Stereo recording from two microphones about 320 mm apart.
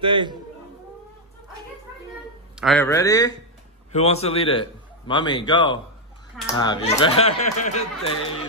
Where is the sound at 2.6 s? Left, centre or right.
Centre; by 7.8 s left.